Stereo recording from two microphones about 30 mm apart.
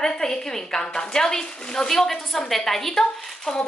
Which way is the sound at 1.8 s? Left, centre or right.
Centre.